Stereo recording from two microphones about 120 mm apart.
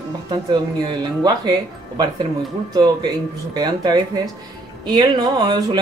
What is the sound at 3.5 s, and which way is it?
Speech, 35° right (ahead or behind).